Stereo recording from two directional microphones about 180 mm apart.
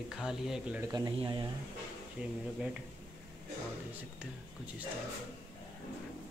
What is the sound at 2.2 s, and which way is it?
Speech, 5° right (ahead or behind).